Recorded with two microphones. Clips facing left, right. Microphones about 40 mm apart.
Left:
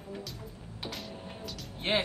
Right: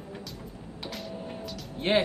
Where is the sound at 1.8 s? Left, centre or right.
Centre.